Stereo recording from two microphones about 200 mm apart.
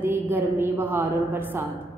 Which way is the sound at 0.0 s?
10° right (ahead or behind).